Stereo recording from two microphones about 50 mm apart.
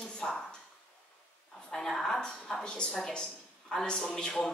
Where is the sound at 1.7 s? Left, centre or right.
Centre.